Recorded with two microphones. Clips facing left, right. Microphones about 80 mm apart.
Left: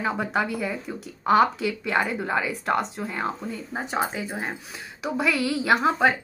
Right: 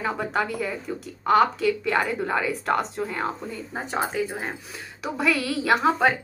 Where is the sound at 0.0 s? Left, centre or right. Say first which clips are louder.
Even; centre.